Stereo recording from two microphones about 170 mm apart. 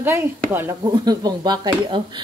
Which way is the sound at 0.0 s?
10° right (ahead or behind).